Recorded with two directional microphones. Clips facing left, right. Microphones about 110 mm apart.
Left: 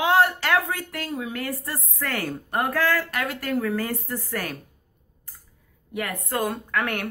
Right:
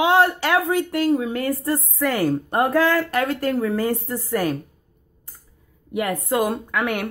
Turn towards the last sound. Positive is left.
turn(degrees=-15)  # may be behind; listen again after turning